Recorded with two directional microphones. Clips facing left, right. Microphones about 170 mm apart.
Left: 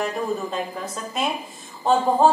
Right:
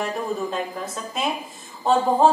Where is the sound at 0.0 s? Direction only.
Centre (ahead or behind).